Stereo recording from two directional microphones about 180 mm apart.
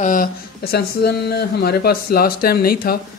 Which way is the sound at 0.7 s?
65° left (ahead or behind).